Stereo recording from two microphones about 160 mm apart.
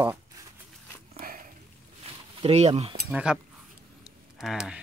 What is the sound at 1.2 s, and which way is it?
Dog, 60° right (ahead or behind).